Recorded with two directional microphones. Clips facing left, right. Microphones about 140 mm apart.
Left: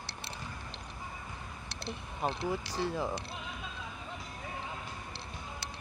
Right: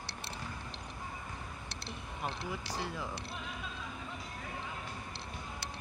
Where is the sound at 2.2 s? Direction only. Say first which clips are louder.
Left 6 dB; 30° left (ahead or behind).